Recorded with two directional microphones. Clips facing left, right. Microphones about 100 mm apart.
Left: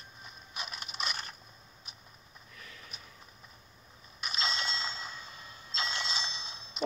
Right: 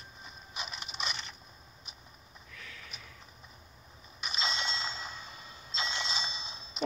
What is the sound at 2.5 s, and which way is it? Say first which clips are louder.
Sniff: right 2 dB; 35° left (ahead or behind).